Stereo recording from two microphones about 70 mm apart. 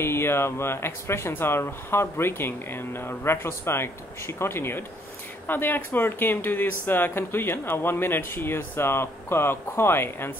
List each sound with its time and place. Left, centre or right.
0.0 s speech: left